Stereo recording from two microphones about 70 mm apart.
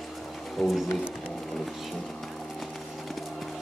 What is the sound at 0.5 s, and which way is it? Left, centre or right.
Speech, centre.